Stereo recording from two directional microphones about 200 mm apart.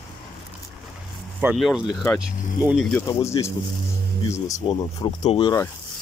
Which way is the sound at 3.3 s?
15° left (ahead or behind).